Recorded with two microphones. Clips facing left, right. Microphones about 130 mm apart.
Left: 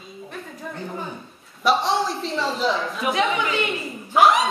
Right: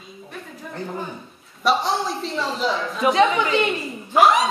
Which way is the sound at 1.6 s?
Centre (ahead or behind).